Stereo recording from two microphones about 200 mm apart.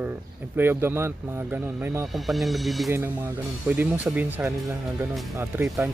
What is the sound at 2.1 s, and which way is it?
Speech, centre (ahead or behind).